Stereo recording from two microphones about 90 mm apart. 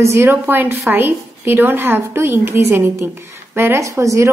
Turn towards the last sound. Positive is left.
turn(degrees=-35)  # may be behind; listen again after turning